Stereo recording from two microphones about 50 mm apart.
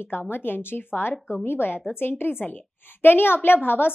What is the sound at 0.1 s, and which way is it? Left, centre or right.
A woman's voice, left.